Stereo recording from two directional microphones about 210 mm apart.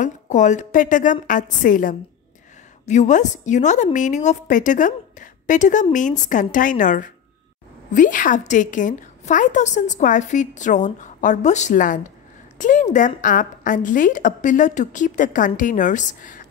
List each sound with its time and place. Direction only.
0.0 s a woman's voice: 35° left (ahead or behind)